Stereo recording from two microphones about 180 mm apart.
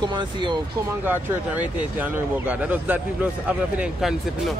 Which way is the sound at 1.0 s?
10° right (ahead or behind).